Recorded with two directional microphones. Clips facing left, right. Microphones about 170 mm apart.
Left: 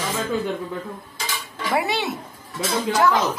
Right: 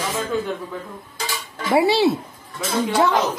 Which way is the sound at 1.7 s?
30° right (ahead or behind).